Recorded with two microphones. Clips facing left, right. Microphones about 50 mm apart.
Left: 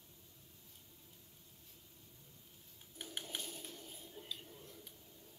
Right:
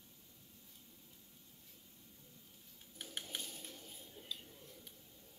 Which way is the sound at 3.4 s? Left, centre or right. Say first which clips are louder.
Left 2 dB; left.